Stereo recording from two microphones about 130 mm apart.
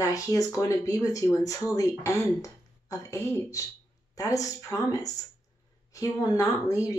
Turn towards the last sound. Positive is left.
turn(degrees=25)  # may be behind; listen again after turning